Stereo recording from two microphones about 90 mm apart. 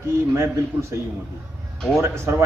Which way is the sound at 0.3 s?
30° right (ahead or behind).